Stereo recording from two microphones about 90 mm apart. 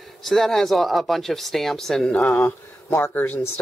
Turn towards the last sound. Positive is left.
turn(degrees=25)  # may be behind; listen again after turning